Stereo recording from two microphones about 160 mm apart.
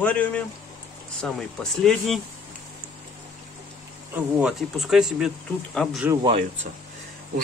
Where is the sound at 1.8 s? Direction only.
Centre (ahead or behind).